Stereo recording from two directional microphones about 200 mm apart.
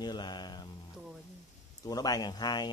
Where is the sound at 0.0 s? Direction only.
20° left (ahead or behind).